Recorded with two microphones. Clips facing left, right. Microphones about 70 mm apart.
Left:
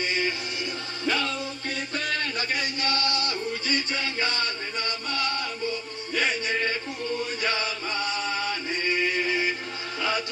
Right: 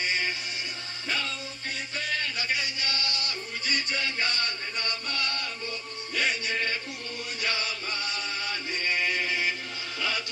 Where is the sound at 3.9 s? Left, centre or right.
Left.